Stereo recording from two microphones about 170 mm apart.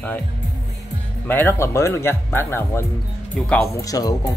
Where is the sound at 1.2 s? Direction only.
10° left (ahead or behind).